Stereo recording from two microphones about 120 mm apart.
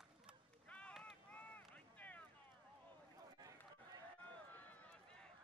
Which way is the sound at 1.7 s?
15° left (ahead or behind).